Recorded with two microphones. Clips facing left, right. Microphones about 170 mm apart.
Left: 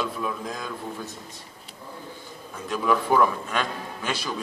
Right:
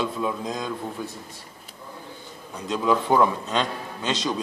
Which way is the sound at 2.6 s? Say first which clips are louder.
Right 1 dB; 20° right (ahead or behind).